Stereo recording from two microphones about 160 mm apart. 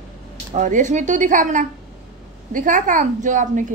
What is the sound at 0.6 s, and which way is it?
A woman's voice, 50° right (ahead or behind).